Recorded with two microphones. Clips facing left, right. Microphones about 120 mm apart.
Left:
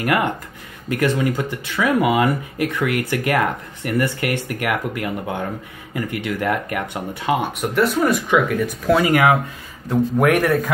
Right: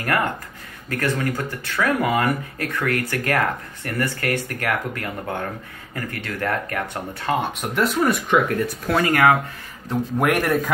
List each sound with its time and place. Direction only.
0.0 s speech: 15° left (ahead or behind)
9.8 s speech: centre (ahead or behind)